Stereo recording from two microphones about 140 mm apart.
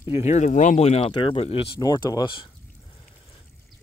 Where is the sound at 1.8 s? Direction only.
30° left (ahead or behind).